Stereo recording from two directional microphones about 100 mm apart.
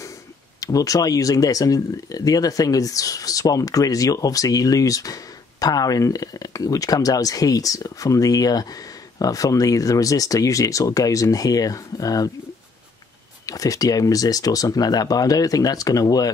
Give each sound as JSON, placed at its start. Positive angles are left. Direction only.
{"t": 0.6, "sound": "speech", "side_deg": 35}
{"t": 13.5, "sound": "speech", "side_deg": 35}